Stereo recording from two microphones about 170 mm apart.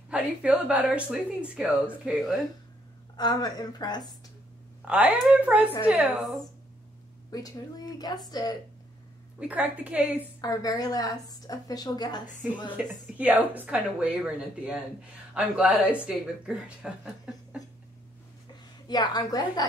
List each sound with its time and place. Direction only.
0.1 s a woman's voice: 5° right (ahead or behind)
3.2 s a woman's voice: 25° left (ahead or behind)
4.8 s a woman's voice: 10° right (ahead or behind)
7.2 s a woman's voice: 20° left (ahead or behind)
9.4 s a woman's voice: 10° right (ahead or behind)
10.4 s a woman's voice: 20° left (ahead or behind)
12.7 s a woman's voice: 10° right (ahead or behind)
18.9 s a woman's voice: 25° left (ahead or behind)